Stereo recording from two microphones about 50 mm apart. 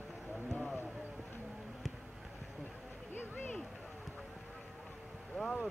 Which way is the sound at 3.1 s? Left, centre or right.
Left.